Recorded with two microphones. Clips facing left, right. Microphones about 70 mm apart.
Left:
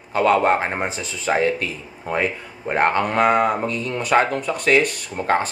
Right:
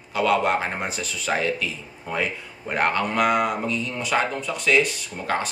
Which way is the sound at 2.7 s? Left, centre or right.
Left.